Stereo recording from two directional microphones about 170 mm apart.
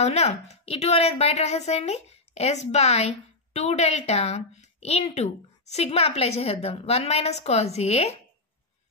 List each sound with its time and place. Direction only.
0.0 s a woman's voice: 40° left (ahead or behind)